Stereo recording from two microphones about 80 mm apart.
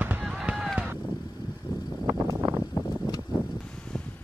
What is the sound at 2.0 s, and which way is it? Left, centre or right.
Wind noise, right.